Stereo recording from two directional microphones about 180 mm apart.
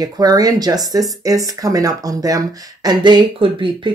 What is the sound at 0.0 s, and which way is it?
Speech, 20° right (ahead or behind).